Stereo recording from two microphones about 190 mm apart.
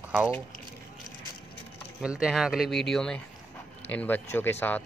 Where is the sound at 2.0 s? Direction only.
5° right (ahead or behind).